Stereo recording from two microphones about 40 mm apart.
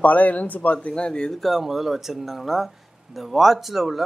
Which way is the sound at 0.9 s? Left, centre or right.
Left.